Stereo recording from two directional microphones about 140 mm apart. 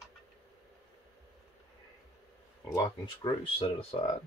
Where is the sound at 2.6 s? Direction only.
25° left (ahead or behind).